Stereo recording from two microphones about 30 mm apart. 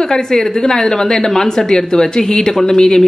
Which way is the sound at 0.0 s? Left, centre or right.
Left.